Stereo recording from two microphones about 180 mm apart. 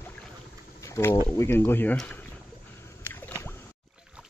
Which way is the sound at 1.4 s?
15° left (ahead or behind).